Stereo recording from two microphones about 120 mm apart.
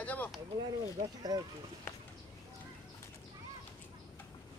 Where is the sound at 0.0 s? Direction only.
15° left (ahead or behind).